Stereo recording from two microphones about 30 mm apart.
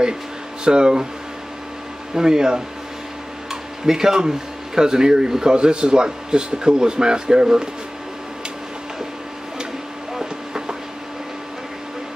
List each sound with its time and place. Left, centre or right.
0.7 s speech: right
2.1 s speech: right
3.8 s speech: centre
10.1 s vehicle: right